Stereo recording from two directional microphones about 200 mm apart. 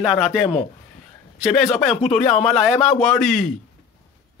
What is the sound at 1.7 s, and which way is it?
Speech, centre (ahead or behind).